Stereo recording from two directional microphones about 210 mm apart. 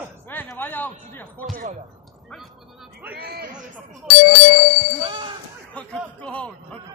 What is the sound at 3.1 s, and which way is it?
Speech, 50° right (ahead or behind).